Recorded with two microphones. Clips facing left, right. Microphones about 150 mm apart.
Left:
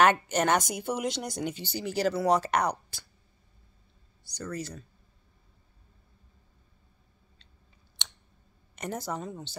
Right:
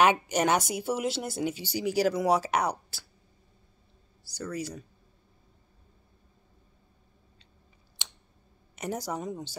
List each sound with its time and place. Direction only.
0.0 s speech: 10° right (ahead or behind)
4.3 s speech: 10° right (ahead or behind)
8.0 s scissors: 5° right (ahead or behind)
8.7 s speech: 10° right (ahead or behind)